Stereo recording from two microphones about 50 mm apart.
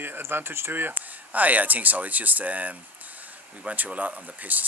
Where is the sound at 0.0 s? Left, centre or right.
Right.